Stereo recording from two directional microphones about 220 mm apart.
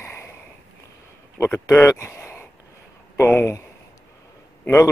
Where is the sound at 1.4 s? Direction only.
10° left (ahead or behind).